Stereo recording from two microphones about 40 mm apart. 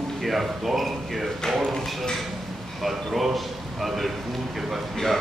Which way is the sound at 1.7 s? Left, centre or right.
Centre.